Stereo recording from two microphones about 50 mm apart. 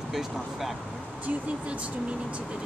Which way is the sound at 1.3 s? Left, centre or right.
Right.